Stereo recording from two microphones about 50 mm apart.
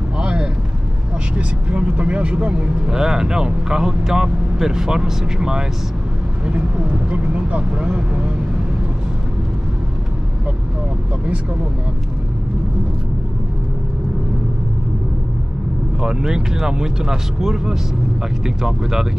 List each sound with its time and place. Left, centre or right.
0.2 s vehicle: right
1.3 s speech: right
2.9 s speech: centre
7.1 s speech: right
16.0 s speech: centre